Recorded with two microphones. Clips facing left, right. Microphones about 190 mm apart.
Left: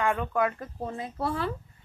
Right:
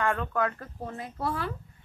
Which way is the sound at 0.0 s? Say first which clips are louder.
Left 2 dB; 15° left (ahead or behind).